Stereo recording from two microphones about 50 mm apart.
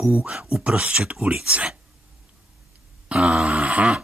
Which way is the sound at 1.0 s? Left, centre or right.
Centre.